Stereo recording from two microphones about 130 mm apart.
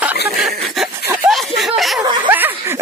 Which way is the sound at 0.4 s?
5° right (ahead or behind).